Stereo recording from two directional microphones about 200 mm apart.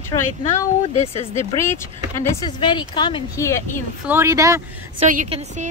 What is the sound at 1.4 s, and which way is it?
Speech, 15° left (ahead or behind).